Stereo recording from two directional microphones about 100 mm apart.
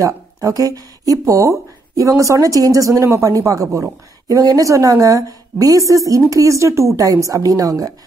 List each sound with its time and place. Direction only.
0.0 s speech: 35° right (ahead or behind)